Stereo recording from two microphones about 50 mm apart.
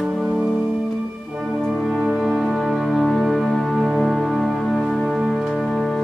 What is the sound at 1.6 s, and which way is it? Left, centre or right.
Music, centre.